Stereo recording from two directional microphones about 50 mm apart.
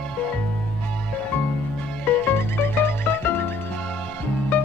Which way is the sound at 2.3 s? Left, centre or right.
Left.